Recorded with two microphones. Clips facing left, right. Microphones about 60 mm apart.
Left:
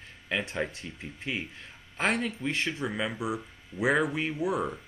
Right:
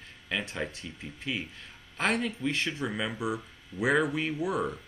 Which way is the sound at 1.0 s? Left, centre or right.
Left.